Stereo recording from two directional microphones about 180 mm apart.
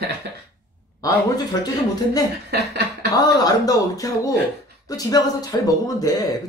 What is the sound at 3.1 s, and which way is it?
Speech, 20° left (ahead or behind).